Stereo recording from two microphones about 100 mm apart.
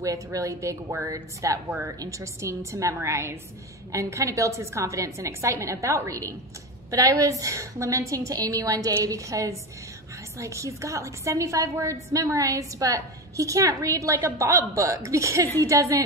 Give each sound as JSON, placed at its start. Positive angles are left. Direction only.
{"t": 0.0, "sound": "a woman's voice", "side_deg": -35}